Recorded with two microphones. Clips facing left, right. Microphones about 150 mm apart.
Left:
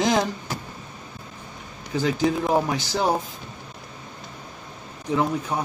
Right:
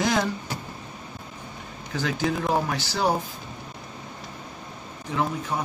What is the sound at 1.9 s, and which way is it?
Speech, 20° left (ahead or behind).